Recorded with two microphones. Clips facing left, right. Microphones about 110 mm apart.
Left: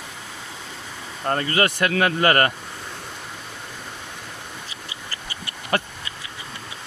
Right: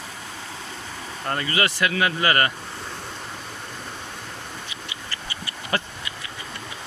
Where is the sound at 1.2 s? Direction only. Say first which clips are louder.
Left 3 dB; 40° left (ahead or behind).